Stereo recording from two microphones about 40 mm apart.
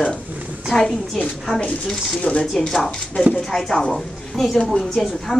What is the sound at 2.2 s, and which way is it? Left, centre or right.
Speech, left.